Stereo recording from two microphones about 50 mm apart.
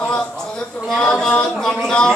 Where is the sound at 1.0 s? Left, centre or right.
Centre.